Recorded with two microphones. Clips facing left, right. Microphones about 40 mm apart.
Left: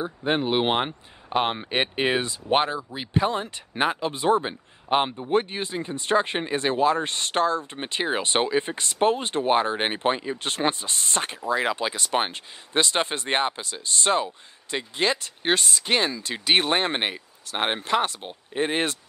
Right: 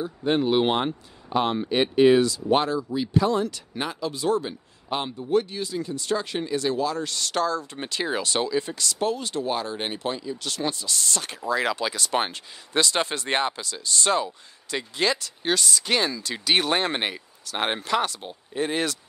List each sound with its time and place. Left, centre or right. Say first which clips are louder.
0.0 s speech: right 1 dB; left